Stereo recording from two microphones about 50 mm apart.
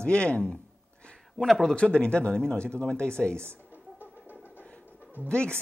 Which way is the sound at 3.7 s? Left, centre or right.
Left.